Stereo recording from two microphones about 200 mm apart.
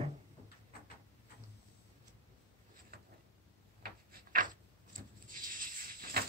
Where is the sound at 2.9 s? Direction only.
50° right (ahead or behind).